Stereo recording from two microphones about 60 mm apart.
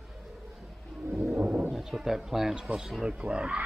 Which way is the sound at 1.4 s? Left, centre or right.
Right.